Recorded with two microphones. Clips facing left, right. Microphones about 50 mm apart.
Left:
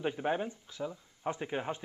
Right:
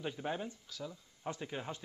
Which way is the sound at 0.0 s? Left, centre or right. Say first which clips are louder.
Left 6 dB; left.